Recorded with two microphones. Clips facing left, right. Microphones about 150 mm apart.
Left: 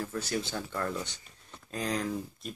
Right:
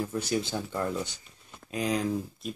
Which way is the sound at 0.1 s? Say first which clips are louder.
Right 4 dB; 15° right (ahead or behind).